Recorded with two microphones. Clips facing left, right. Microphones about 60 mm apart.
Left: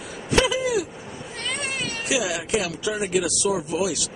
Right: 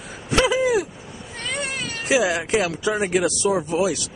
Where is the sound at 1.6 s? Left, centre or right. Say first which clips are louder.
Right 2 dB; centre.